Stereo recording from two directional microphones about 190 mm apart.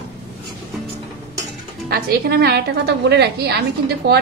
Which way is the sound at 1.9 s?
55° right (ahead or behind).